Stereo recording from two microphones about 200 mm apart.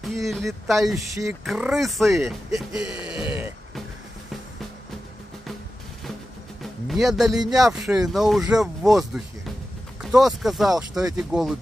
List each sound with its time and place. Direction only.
0.0 s speech: centre (ahead or behind)
0.9 s speech: 15° right (ahead or behind)
1.4 s speech: centre (ahead or behind)
2.5 s a sound: 5° right (ahead or behind)
6.9 s speech: centre (ahead or behind)